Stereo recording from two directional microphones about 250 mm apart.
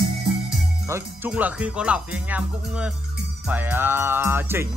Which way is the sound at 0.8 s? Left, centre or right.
Centre.